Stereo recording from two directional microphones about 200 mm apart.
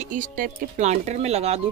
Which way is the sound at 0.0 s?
40° right (ahead or behind).